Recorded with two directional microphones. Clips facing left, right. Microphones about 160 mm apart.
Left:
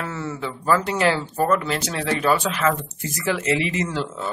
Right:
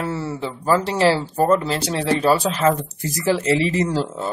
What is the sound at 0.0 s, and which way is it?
Speech, 30° right (ahead or behind).